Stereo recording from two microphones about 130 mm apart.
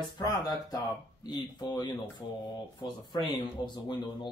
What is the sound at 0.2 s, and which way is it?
Speech, 30° left (ahead or behind).